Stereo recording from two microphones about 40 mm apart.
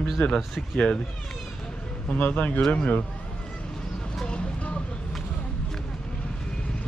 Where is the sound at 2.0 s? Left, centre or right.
Left.